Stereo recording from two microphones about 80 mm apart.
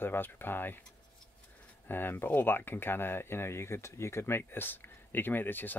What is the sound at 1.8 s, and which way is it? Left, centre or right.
Speech, left.